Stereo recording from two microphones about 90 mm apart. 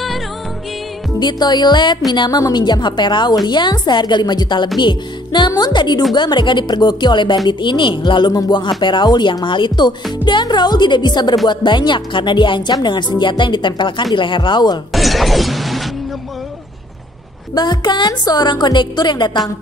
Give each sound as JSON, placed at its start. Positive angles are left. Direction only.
{"t": 1.2, "sound": "speech", "side_deg": 55}
{"t": 14.9, "sound": "shatter", "side_deg": 0}
{"t": 17.6, "sound": "speech", "side_deg": 55}